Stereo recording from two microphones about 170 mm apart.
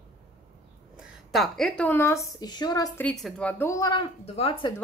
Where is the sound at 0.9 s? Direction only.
Centre (ahead or behind); by 3.0 s 20° left (ahead or behind).